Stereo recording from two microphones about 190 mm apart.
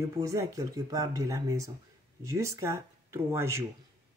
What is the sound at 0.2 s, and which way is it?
Speech, 15° right (ahead or behind).